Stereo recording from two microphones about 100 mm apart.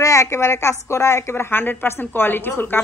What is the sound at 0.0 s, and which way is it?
A woman's voice, 30° left (ahead or behind).